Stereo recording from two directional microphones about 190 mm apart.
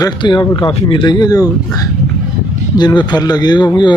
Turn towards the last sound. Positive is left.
turn(degrees=25)  # may be behind; listen again after turning